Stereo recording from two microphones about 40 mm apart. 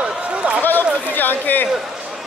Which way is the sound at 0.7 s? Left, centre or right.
Left.